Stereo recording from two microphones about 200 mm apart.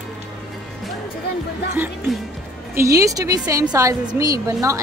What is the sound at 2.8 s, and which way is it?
A woman's voice, 15° right (ahead or behind).